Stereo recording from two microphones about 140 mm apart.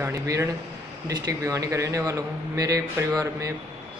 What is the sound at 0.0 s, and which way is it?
A man's voice, 20° right (ahead or behind).